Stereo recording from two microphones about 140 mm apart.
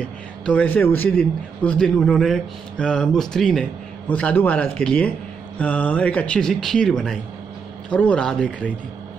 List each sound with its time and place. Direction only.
0.0 s a man's voice: 10° left (ahead or behind)